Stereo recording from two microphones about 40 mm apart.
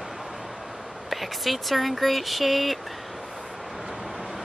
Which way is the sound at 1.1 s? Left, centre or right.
Centre.